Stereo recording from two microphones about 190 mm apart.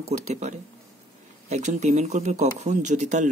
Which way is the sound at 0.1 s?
40° right (ahead or behind).